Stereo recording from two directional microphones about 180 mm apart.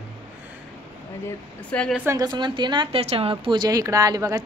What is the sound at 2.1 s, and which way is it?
A woman's voice, 20° right (ahead or behind).